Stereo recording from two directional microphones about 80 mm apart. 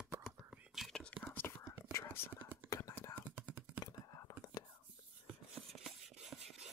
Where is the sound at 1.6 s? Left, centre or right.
Left.